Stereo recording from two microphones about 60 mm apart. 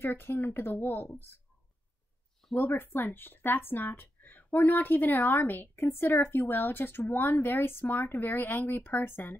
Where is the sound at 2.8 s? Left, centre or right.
Left.